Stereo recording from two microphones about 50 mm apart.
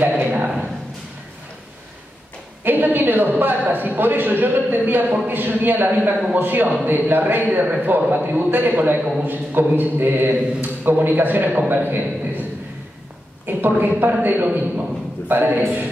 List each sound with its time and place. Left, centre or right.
0.3 s a sound: right
2.6 s a man's voice: right
7.6 s a man's voice: right
7.9 s a man's voice: right
13.5 s a man's voice: right